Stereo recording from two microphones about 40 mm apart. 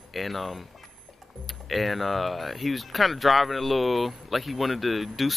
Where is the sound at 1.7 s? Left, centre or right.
Centre.